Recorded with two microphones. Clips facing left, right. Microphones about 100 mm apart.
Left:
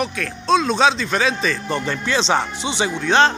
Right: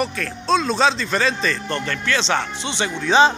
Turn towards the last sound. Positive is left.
turn(degrees=-5)  # may be behind; listen again after turning